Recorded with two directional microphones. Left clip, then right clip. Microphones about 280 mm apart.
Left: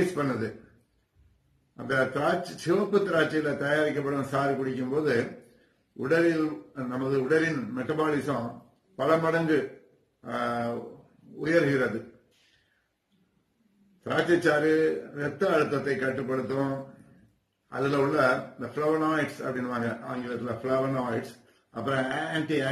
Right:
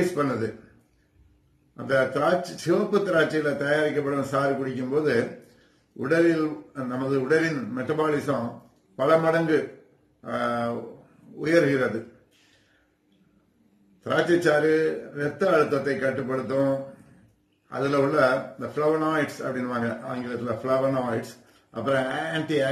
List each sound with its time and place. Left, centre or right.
0.1 s a man's voice: centre
1.8 s a man's voice: centre
14.0 s a man's voice: centre